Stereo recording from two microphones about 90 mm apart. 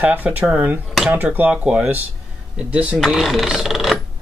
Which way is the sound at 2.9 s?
Centre (ahead or behind).